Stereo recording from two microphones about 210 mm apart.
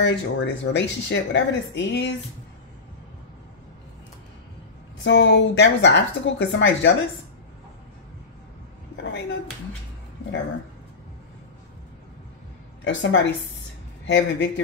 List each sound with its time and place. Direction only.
0.0 s speech: 55° left (ahead or behind)
5.0 s speech: 55° left (ahead or behind)
8.9 s a sound: 55° left (ahead or behind)
12.8 s speech: 60° left (ahead or behind)